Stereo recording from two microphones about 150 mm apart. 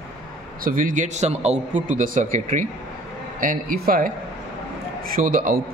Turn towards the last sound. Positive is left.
turn(degrees=-70)  # may be behind; listen again after turning